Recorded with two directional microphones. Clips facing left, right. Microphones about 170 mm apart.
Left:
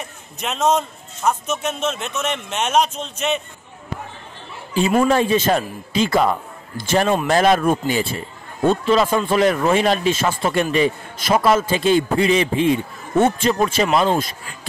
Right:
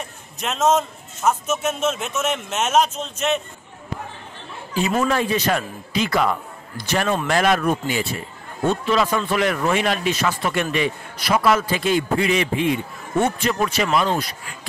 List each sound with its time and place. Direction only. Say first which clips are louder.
0.4 s a man's voice: even; centre (ahead or behind)
5.0 s a man's voice: left 4 dB; 30° left (ahead or behind)